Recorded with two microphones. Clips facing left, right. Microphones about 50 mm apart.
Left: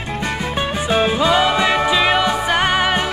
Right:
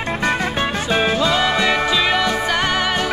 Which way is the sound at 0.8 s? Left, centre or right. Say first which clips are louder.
Left 3 dB; centre.